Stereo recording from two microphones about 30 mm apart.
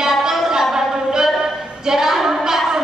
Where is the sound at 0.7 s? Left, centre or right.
Centre.